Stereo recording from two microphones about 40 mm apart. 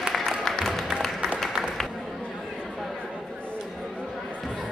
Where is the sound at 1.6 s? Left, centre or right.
Centre.